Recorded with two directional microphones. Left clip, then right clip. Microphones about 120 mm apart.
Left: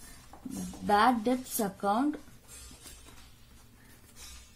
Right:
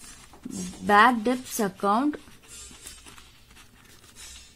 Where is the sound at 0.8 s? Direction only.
45° right (ahead or behind).